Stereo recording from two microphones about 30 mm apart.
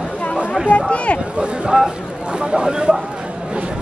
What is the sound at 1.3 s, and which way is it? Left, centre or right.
Speech, right.